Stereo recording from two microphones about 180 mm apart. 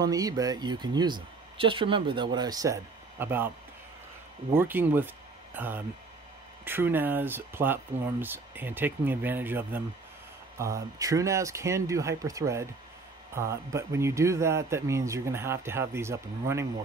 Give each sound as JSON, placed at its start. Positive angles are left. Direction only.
{"t": 0.0, "sound": "speech", "side_deg": -20}
{"t": 4.6, "sound": "speech", "side_deg": -10}